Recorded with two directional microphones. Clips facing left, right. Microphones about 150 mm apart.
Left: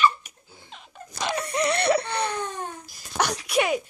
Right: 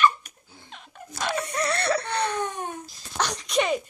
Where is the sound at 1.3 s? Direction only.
20° left (ahead or behind).